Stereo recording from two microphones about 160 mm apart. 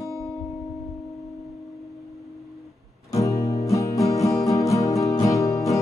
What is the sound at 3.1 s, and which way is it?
Music, 20° left (ahead or behind).